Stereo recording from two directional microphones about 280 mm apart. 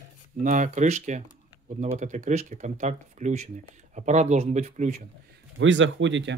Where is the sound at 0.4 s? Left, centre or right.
Right.